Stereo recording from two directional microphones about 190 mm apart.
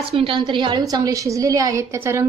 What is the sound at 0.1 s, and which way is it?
A woman's voice, 25° right (ahead or behind).